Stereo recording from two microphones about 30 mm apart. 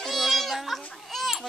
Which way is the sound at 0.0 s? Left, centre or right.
Centre.